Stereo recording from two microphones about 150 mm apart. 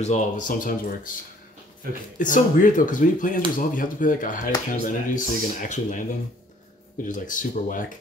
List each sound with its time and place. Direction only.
0.0 s speech: 55° left (ahead or behind)
2.1 s speech: 60° left (ahead or behind)
7.1 s speech: 60° left (ahead or behind)